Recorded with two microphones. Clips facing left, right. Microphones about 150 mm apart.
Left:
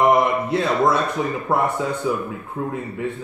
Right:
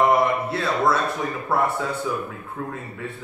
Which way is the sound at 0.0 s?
20° left (ahead or behind).